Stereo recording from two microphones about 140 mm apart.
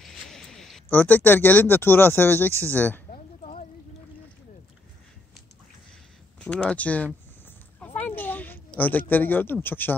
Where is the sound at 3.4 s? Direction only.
55° left (ahead or behind).